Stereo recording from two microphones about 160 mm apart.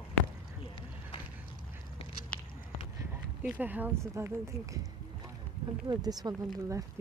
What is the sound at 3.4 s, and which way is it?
Speech, 10° right (ahead or behind).